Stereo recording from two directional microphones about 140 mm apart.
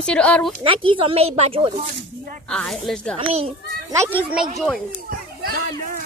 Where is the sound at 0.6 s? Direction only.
40° right (ahead or behind).